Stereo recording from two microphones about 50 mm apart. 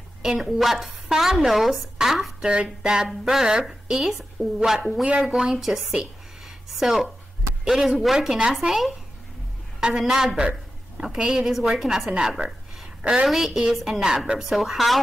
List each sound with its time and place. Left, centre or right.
0.4 s speech: centre
2.4 s a man's voice: centre
9.8 s a man's voice: centre
13.3 s a man's voice: centre